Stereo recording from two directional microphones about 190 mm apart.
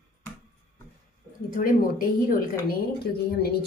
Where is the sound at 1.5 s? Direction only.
50° left (ahead or behind).